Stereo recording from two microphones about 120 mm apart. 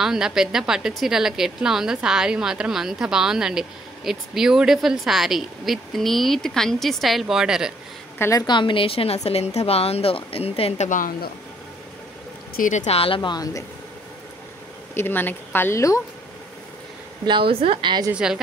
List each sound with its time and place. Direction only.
0.0 s a woman's voice: 5° right (ahead or behind)
8.2 s a woman's voice: 25° left (ahead or behind)
8.5 s a woman's voice: 40° left (ahead or behind)
12.6 s speech: 70° left (ahead or behind); by 13.7 s 30° left (ahead or behind)
15.0 s speech: 15° left (ahead or behind)
17.3 s a woman's voice: 50° right (ahead or behind)
18.1 s a woman's voice: 5° right (ahead or behind)